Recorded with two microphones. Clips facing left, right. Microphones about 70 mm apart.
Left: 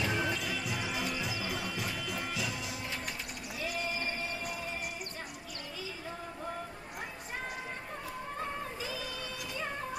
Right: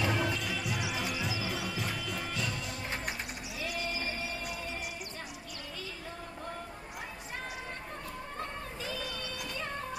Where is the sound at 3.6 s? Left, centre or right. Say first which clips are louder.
Left 1 dB; centre.